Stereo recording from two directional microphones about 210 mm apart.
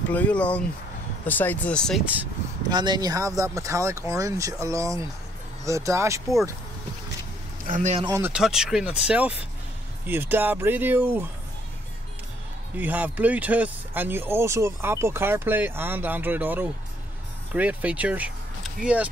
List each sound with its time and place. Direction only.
0.1 s speech: 5° left (ahead or behind)
2.7 s speech: 20° right (ahead or behind)
7.6 s speech: 35° right (ahead or behind)
8.0 s speech: 10° right (ahead or behind)
12.7 s speech: 10° right (ahead or behind)